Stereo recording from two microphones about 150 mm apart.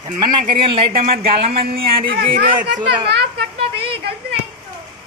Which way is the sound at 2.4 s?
80° right.